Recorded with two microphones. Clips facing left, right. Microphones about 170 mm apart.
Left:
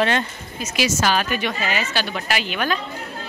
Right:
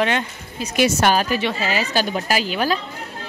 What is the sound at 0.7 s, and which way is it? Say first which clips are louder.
Speech: right 4 dB; 55° right (ahead or behind).